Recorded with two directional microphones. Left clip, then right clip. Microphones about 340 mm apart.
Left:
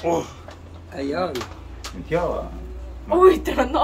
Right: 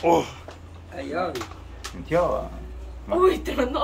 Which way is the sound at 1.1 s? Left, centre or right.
Left.